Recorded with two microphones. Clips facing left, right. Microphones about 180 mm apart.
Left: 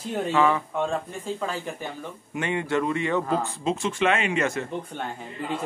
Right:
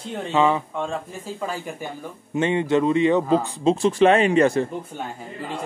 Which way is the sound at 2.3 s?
25° right (ahead or behind).